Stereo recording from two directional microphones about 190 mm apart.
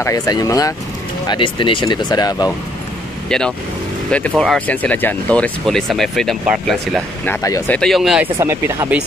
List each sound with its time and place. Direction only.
0.0 s speech: 20° left (ahead or behind)
3.3 s speech: 5° left (ahead or behind)
7.2 s speech: 15° left (ahead or behind); by 8.3 s centre (ahead or behind)
8.4 s speech: 15° right (ahead or behind)